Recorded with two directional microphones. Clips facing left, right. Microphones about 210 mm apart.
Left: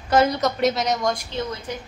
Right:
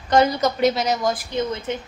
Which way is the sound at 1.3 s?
20° right (ahead or behind).